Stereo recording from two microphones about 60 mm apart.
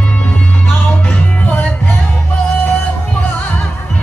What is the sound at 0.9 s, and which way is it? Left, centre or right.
Music, left.